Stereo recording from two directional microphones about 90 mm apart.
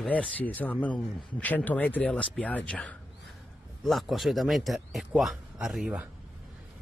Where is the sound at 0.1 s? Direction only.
15° left (ahead or behind).